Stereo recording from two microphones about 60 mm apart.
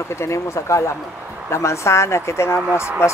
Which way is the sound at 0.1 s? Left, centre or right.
Left.